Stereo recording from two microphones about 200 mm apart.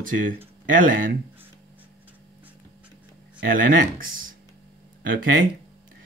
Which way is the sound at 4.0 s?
45° right (ahead or behind).